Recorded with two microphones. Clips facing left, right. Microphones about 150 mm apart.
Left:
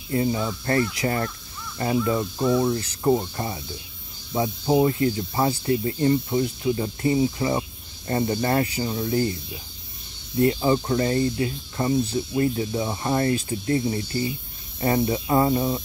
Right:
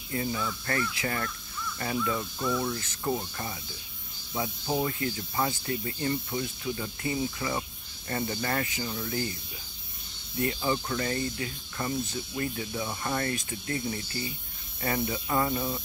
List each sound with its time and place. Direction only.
0.1 s speech: 35° left (ahead or behind)